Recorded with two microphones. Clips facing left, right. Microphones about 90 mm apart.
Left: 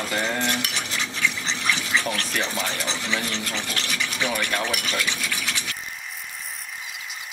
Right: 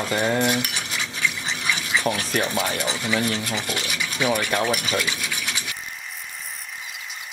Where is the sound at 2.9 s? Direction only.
10° right (ahead or behind).